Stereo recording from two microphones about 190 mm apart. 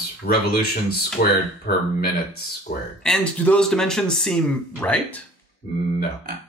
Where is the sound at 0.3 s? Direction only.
50° left (ahead or behind).